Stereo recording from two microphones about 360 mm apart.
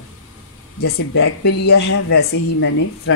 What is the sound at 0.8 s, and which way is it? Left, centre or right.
A man's voice, left.